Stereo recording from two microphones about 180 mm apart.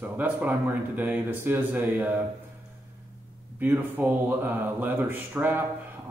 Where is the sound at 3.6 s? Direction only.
10° right (ahead or behind).